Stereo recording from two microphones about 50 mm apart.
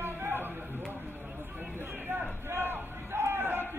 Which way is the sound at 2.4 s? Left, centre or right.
Right.